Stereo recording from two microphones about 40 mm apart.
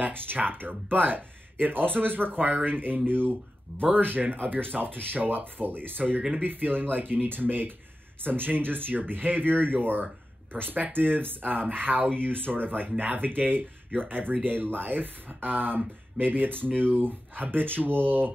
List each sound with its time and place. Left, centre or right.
0.1 s speech: right